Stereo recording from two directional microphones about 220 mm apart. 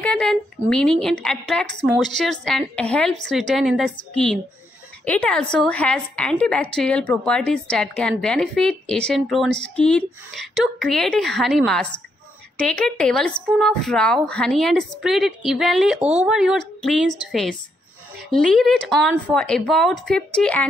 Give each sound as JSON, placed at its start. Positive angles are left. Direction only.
{"t": 0.0, "sound": "a woman's voice", "side_deg": 5}